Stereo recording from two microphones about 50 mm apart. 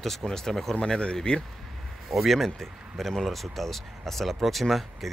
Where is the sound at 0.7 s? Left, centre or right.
Centre.